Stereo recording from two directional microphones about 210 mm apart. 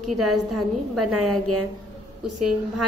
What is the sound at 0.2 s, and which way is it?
A woman's voice, 90° right.